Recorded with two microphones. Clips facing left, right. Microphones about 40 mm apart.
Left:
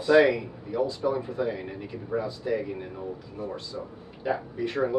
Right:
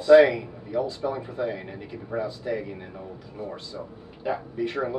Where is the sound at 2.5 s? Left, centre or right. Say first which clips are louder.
Left 2 dB; centre.